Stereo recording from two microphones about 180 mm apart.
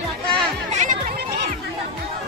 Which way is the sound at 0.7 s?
45° right (ahead or behind).